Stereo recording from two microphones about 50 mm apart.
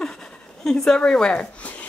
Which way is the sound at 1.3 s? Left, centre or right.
Left.